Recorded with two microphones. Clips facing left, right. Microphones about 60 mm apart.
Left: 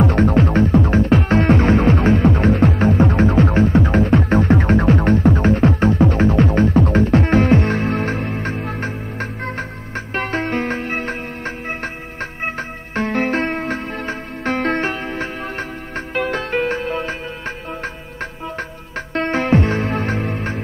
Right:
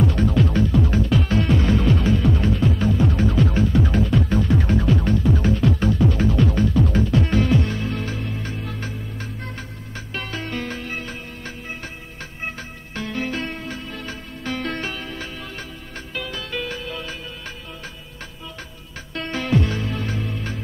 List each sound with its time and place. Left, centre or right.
0.0 s music: left
19.1 s music: left